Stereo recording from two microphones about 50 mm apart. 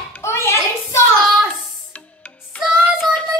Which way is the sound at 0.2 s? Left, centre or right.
Left.